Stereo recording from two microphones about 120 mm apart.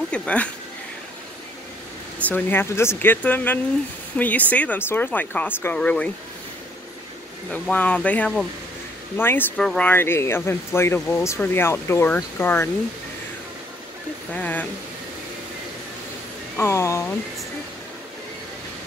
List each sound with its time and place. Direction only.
0.1 s speech: 10° left (ahead or behind)
2.2 s speech: 15° left (ahead or behind)
7.5 s speech: 10° left (ahead or behind)
9.6 s speech: 5° left (ahead or behind)
9.8 s speech: 20° left (ahead or behind)
14.3 s speech: 10° left (ahead or behind)
16.5 s speech: 20° left (ahead or behind)